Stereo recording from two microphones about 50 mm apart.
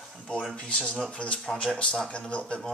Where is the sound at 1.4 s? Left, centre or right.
Centre.